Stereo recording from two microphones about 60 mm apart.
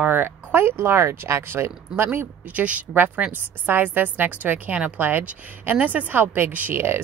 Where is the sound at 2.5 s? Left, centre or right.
Right.